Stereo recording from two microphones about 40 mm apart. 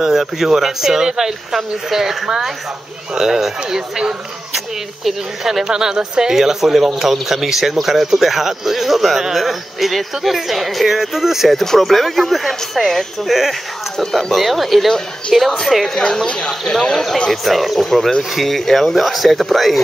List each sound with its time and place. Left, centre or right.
0.0 s speech: centre
6.3 s speech: centre
15.7 s speech: centre
17.3 s speech: centre